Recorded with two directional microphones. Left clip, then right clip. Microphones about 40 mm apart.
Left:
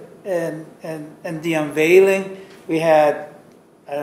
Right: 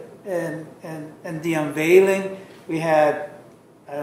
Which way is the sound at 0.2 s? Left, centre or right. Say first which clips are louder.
Left 4 dB; left.